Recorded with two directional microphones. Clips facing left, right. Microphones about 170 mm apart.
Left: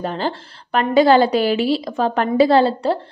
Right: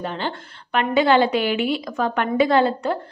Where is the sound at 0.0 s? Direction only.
40° left (ahead or behind).